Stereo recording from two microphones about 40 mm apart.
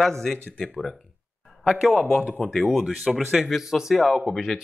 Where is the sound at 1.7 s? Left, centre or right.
Centre.